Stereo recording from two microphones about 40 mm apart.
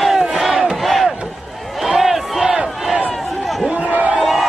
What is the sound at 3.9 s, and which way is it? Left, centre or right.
Crowd, right.